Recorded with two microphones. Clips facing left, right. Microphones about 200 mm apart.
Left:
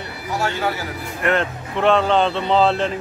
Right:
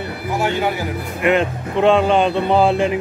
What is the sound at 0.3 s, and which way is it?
Speech, 15° right (ahead or behind).